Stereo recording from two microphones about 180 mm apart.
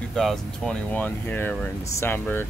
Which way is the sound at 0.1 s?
Centre (ahead or behind).